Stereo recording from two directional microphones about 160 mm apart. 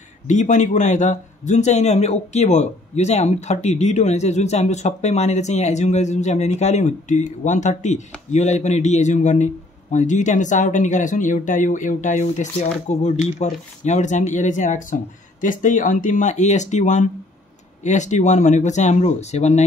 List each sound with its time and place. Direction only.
0.3 s a man's voice: 50° left (ahead or behind)